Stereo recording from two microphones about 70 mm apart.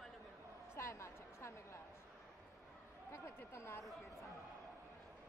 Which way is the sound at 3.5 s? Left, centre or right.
Left.